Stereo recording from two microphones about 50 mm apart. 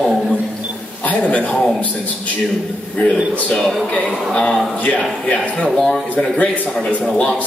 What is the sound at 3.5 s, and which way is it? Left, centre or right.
Speech, centre.